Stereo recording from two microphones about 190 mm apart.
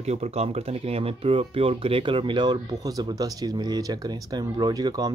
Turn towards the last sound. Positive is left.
turn(degrees=-20)  # may be behind; listen again after turning